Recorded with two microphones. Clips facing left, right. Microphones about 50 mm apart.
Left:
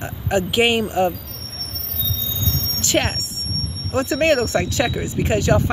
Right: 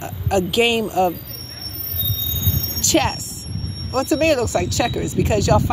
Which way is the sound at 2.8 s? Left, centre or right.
Centre.